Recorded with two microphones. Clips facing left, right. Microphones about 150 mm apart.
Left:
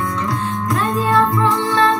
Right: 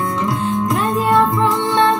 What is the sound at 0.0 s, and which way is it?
Music, 25° right (ahead or behind).